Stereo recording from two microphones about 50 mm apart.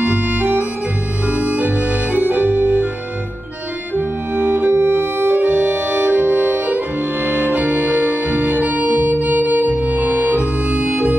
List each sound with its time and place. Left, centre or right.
0.0 s organ: right
4.4 s music: right
7.2 s organ: right